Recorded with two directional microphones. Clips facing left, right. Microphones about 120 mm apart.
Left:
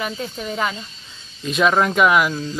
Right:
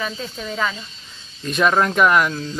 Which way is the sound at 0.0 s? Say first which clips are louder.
Left 1 dB; 15° left (ahead or behind).